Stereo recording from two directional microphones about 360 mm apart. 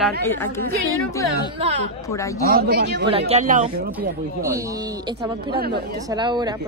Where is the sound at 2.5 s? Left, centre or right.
Right.